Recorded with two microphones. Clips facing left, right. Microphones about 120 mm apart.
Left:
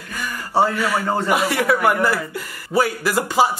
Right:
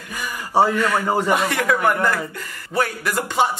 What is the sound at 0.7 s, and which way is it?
Speech, 5° left (ahead or behind).